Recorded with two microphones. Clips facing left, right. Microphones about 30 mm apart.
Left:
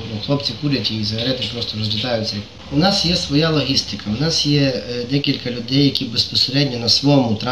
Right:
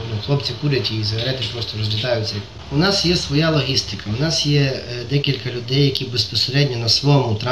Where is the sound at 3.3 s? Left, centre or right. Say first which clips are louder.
Left 1 dB; centre.